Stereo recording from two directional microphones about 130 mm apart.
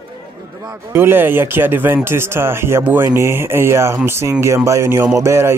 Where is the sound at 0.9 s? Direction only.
15° right (ahead or behind).